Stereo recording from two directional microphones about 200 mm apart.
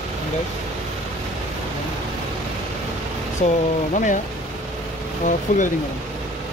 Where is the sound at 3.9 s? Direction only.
40° left (ahead or behind).